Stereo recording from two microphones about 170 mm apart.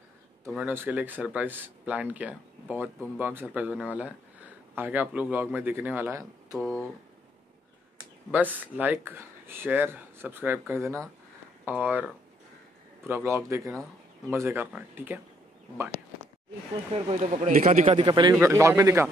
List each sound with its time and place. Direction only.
0.5 s speech: 10° right (ahead or behind)
8.3 s speech: 10° right (ahead or behind)
16.9 s a man's voice: 40° right (ahead or behind)
18.3 s speech: 15° right (ahead or behind)